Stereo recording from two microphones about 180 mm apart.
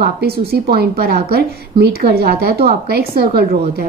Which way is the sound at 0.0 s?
60° right (ahead or behind).